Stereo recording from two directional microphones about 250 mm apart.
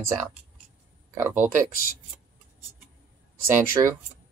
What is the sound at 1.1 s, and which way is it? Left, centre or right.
Speech, centre.